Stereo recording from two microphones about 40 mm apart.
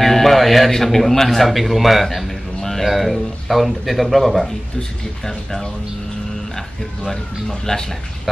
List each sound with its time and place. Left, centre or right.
0.0 s speech: centre
5.2 s speech: centre
7.1 s speech: centre